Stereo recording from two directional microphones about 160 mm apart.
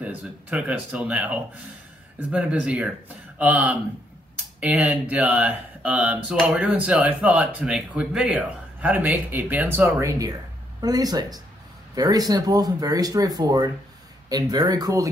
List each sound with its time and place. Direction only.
0.0 s speech: 10° right (ahead or behind)